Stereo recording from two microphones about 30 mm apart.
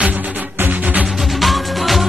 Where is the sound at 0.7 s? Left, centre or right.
Right.